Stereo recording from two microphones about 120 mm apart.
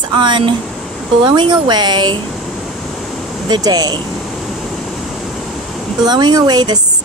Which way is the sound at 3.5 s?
35° right (ahead or behind).